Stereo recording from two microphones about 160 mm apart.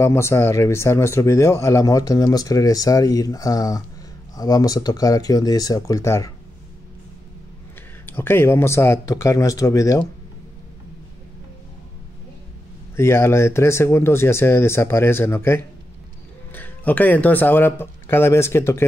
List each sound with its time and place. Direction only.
0.0 s speech: 15° left (ahead or behind)
8.1 s speech: 15° left (ahead or behind)
12.9 s speech: 15° left (ahead or behind)